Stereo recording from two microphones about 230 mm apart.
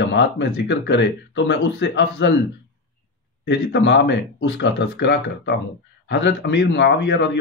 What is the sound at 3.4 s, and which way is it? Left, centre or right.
A man's voice, left.